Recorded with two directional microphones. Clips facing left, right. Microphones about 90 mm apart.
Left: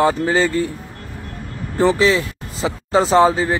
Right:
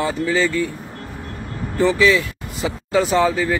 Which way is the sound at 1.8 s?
35° left (ahead or behind).